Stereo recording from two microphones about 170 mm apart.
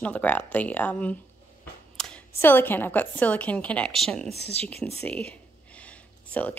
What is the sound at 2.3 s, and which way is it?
Speech, 10° left (ahead or behind).